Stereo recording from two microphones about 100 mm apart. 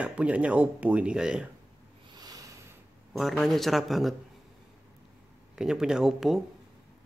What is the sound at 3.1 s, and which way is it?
Speech, centre (ahead or behind).